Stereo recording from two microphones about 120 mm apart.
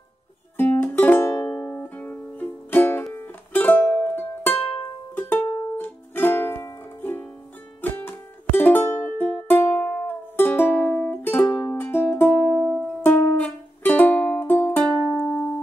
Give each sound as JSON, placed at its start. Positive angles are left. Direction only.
{"t": 0.6, "sound": "music", "side_deg": 15}
{"t": 15.0, "sound": "music", "side_deg": 0}